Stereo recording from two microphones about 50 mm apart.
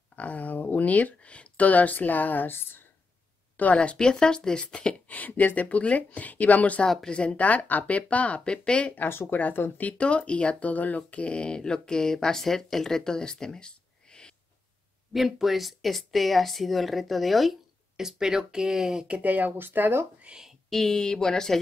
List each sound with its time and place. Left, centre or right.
0.1 s speech: left
3.5 s speech: left
5.0 s speech: left
9.3 s speech: left; by 14.3 s centre
15.1 s a woman's voice: centre
19.0 s speech: right
19.6 s speech: right
20.3 s speech: right
20.7 s speech: centre